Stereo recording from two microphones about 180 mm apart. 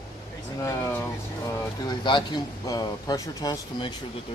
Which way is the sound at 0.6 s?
15° left (ahead or behind).